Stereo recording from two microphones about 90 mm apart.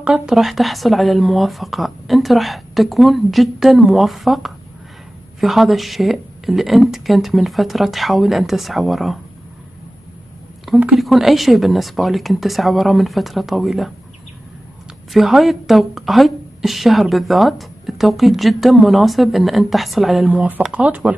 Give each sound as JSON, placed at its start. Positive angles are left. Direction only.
{"t": 0.0, "sound": "a woman's voice", "side_deg": -5}
{"t": 11.0, "sound": "a woman's voice", "side_deg": 0}
{"t": 15.1, "sound": "a woman's voice", "side_deg": 0}
{"t": 20.2, "sound": "speech", "side_deg": -15}